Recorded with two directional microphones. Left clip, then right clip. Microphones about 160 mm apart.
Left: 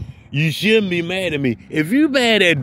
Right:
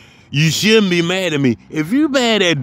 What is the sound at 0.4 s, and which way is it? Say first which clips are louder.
A man's voice: right 3 dB; 35° right (ahead or behind).